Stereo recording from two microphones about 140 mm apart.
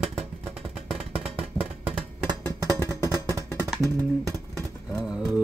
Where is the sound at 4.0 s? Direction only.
30° right (ahead or behind).